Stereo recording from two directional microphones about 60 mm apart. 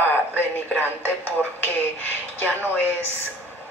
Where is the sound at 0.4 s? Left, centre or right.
Left.